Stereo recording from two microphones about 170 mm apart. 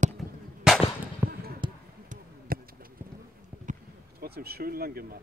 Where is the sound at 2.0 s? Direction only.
55° right (ahead or behind).